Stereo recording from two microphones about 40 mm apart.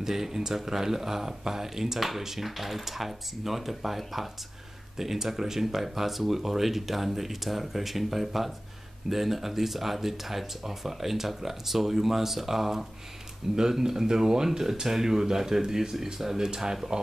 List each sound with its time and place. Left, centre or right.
0.0 s speech: centre